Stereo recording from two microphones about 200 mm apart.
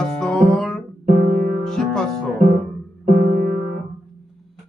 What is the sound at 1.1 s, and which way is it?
Music, 50° right (ahead or behind).